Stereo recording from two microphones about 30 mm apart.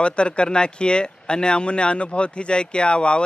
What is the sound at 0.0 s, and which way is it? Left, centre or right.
Speech, left.